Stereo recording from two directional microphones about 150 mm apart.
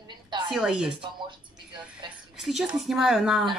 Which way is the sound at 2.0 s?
30° right (ahead or behind).